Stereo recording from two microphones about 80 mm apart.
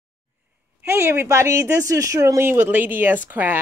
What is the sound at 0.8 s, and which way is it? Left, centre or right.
Speech, right.